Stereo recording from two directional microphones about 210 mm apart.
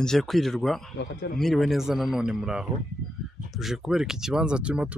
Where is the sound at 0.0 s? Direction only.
Centre (ahead or behind).